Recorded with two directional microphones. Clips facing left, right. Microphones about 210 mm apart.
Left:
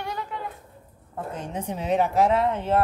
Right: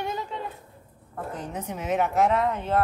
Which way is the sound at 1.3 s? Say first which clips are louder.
Left 3 dB; 30° left (ahead or behind).